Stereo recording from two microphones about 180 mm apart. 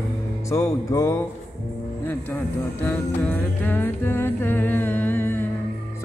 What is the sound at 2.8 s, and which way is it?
Music, 10° left (ahead or behind).